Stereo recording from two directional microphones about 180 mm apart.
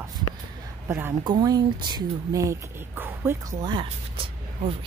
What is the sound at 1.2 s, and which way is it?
Speech, 25° right (ahead or behind).